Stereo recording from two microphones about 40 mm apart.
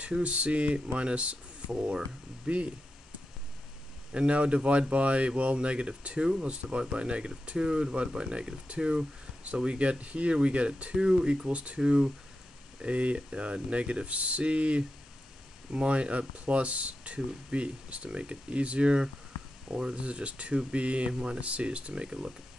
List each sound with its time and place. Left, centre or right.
0.0 s speech: right
4.1 s speech: right
20.0 s speech: right